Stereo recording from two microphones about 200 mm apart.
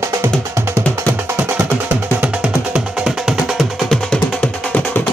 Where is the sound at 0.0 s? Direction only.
10° right (ahead or behind).